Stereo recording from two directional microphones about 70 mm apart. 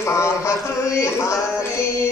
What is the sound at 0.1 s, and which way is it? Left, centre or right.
Speech, left.